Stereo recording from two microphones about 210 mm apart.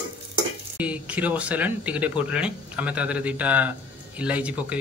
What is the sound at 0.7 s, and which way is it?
Speech, 5° right (ahead or behind).